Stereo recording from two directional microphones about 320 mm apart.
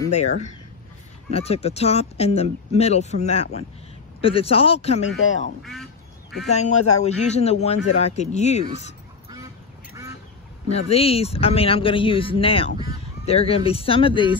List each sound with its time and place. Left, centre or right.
0.0 s speech: left
5.6 s speech: centre
6.5 s speech: left
10.7 s speech: centre